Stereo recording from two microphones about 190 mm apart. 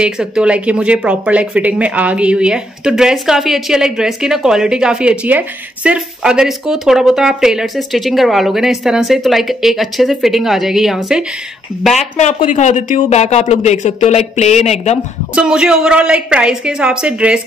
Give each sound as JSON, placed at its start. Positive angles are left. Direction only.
{"t": 0.0, "sound": "speech", "side_deg": -5}
{"t": 12.2, "sound": "speech", "side_deg": 35}
{"t": 15.3, "sound": "speech", "side_deg": -5}